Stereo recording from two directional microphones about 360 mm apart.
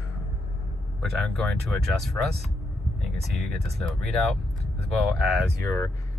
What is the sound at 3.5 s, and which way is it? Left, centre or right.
Speech, right.